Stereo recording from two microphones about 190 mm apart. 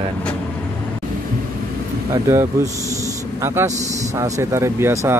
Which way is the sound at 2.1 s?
15° right (ahead or behind).